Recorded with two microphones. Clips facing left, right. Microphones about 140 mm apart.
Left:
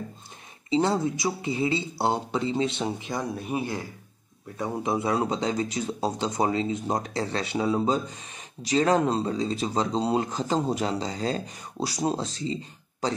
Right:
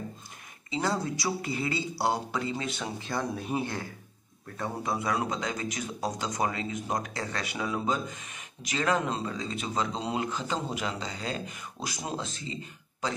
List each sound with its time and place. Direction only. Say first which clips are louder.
0.7 s speech: left 6 dB; 25° left (ahead or behind)
3.3 s speech: left 2 dB; 5° left (ahead or behind)
4.6 s speech: left 5 dB; 20° left (ahead or behind); by 12.5 s 35° left (ahead or behind)